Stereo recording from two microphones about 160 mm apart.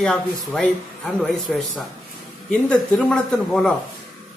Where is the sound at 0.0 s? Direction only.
5° left (ahead or behind).